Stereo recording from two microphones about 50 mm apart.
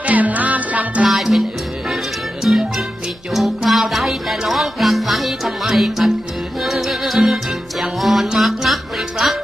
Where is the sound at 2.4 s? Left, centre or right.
Centre.